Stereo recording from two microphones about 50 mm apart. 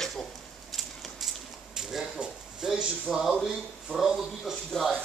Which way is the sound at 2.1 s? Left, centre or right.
Right.